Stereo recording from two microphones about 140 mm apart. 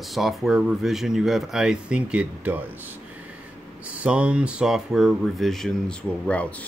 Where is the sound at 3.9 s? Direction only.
10° right (ahead or behind).